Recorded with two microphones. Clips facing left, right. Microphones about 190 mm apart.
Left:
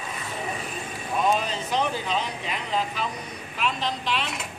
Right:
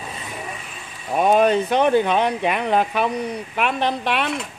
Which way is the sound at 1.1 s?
60° right (ahead or behind).